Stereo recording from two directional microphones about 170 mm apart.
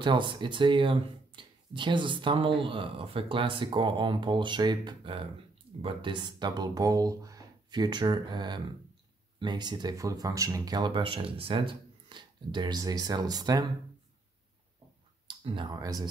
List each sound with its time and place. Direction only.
0.0 s speech: 30° right (ahead or behind)
15.2 s speech: 30° right (ahead or behind)